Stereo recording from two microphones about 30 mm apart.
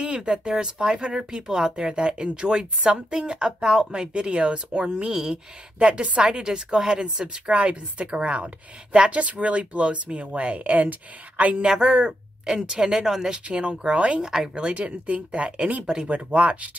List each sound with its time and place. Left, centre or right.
0.0 s speech: right
5.1 s speech: centre
5.8 s speech: right
7.4 s speech: right
11.6 s speech: centre
13.5 s speech: right
16.3 s speech: right